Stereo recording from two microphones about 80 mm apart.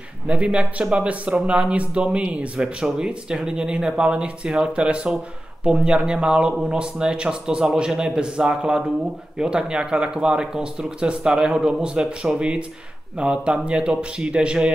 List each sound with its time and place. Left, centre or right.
0.3 s speech: centre